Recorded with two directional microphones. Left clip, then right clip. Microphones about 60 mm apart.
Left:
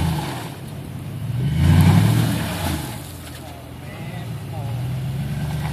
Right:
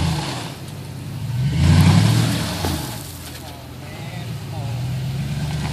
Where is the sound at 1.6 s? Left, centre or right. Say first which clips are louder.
Right 1 dB; right.